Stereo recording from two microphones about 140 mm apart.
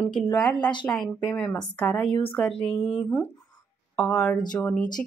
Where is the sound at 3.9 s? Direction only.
5° left (ahead or behind).